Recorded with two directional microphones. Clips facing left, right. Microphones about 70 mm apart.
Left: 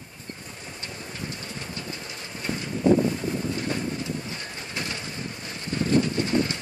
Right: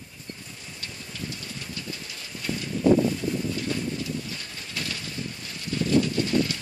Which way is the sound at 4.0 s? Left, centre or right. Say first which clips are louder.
Left 1 dB; left.